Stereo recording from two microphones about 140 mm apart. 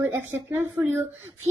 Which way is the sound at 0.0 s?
20° right (ahead or behind).